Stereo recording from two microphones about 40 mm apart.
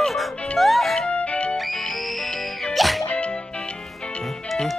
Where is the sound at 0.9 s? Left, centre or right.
Left.